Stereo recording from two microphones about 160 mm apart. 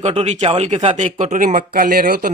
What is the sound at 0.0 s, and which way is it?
Speech, 40° right (ahead or behind).